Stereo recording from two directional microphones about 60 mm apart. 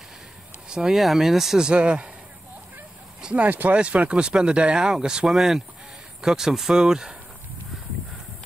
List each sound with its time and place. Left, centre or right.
0.7 s speech: centre
3.2 s a sound: centre
3.4 s speech: right; by 7.2 s centre